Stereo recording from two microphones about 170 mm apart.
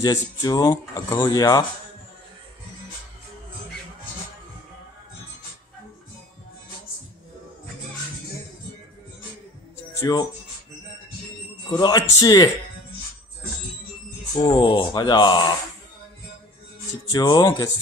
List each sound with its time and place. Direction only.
0.0 s speech: 20° left (ahead or behind)
9.9 s speech: 20° left (ahead or behind)
11.7 s speech: 25° left (ahead or behind)
14.4 s speech: 30° left (ahead or behind)
17.1 s speech: 25° left (ahead or behind)